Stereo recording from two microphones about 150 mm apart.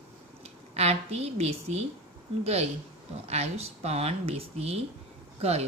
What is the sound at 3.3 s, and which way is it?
Speech, 45° right (ahead or behind).